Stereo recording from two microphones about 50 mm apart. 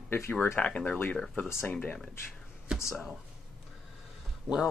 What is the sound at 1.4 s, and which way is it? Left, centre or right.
Speech, left.